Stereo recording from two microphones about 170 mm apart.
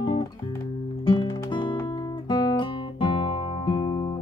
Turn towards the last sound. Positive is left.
turn(degrees=25)  # may be behind; listen again after turning